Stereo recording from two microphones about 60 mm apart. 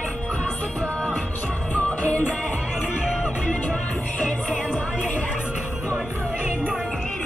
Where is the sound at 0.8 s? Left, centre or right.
Left.